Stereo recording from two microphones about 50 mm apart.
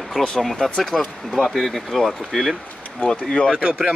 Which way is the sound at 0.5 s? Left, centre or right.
Centre.